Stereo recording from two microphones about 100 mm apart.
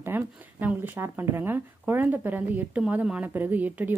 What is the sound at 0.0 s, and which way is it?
Speech, 20° right (ahead or behind).